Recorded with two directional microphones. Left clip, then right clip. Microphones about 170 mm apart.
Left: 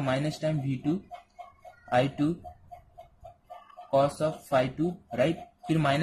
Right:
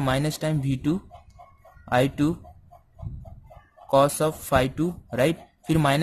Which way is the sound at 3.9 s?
55° right (ahead or behind).